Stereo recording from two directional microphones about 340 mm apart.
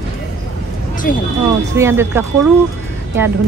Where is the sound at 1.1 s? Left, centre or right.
Left.